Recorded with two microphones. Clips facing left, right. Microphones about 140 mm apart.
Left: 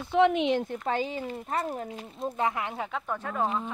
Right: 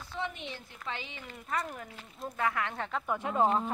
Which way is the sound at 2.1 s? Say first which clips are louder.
Left 3 dB; 25° left (ahead or behind).